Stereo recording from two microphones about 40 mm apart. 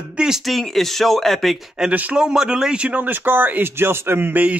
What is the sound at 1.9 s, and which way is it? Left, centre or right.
Speech, right.